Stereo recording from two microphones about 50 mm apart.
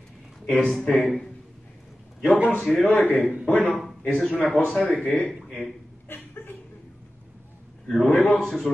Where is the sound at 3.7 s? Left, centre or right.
Centre.